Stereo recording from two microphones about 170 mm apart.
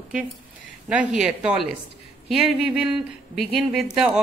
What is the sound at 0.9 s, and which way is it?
Speech, 5° right (ahead or behind).